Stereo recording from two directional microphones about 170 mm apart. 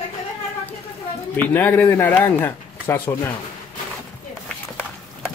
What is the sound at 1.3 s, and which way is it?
Speech, 10° left (ahead or behind).